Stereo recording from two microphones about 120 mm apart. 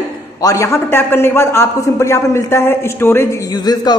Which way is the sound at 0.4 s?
25° left (ahead or behind).